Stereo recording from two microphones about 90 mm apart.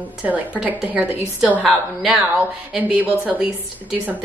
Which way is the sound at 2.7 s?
15° right (ahead or behind).